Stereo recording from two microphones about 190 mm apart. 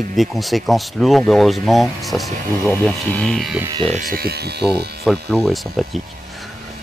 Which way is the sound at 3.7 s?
30° right (ahead or behind).